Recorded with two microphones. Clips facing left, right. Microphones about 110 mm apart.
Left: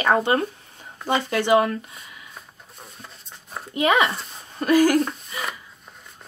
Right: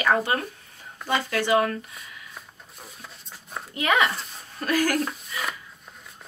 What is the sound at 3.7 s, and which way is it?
Speech, 25° left (ahead or behind).